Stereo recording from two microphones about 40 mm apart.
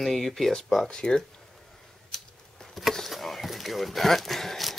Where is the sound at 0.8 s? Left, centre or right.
Centre.